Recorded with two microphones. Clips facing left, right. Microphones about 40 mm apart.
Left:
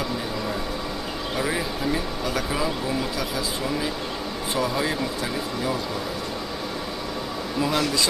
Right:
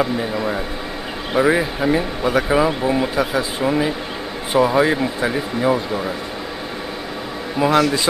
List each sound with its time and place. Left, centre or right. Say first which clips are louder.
0.0 s speech: right 8 dB; right
7.5 s speech: right 9 dB; right